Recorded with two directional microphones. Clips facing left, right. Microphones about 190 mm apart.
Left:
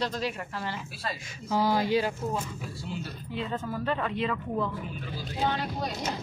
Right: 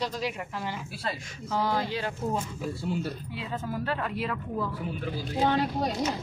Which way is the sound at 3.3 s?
5° right (ahead or behind).